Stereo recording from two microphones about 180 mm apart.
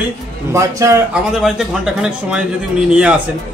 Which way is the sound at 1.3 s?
Centre (ahead or behind).